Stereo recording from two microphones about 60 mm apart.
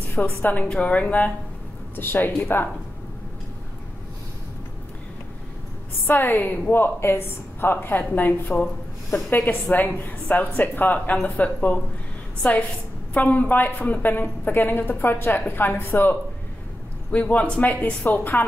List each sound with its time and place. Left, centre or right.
0.2 s a woman's voice: centre
0.7 s speech: centre
2.0 s a woman's voice: left
6.0 s a woman's voice: left
17.1 s speech: left